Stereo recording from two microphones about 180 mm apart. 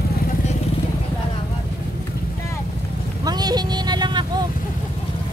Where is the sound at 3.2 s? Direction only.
20° right (ahead or behind).